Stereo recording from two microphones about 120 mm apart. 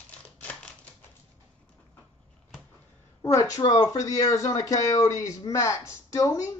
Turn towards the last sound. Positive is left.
turn(degrees=25)  # may be behind; listen again after turning